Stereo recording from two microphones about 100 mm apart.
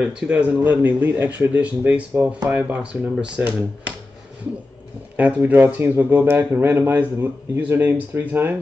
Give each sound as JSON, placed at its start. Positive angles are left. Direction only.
{"t": 0.0, "sound": "speech", "side_deg": -15}
{"t": 5.1, "sound": "speech", "side_deg": -15}